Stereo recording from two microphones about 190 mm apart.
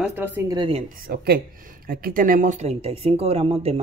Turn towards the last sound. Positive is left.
turn(degrees=-30)  # may be behind; listen again after turning